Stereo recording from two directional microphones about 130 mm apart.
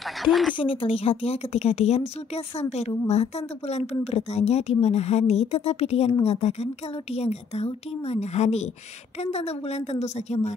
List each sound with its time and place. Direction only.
0.2 s speech: centre (ahead or behind)
0.6 s a woman's voice: 45° left (ahead or behind)